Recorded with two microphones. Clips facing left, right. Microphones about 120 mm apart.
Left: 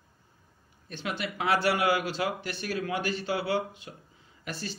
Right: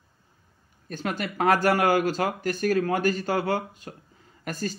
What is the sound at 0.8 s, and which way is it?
Speech, 45° right (ahead or behind).